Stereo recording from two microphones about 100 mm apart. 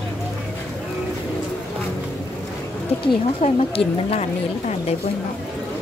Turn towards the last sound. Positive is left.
turn(degrees=80)